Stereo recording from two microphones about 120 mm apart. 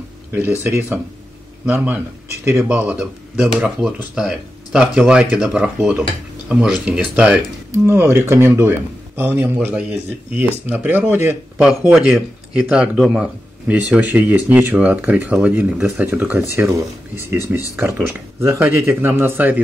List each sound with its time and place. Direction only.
0.7 s speech: 20° right (ahead or behind)
2.5 s speech: 10° right (ahead or behind)
11.9 s speech: 5° right (ahead or behind)